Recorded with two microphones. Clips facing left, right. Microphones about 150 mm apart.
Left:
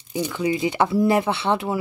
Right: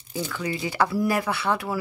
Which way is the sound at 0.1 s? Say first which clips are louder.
Left 6 dB; 20° left (ahead or behind).